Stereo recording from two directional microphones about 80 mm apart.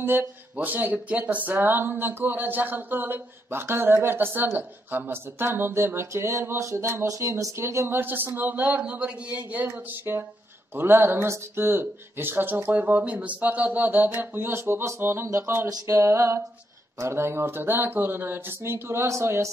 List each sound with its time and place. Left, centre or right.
0.0 s speech: right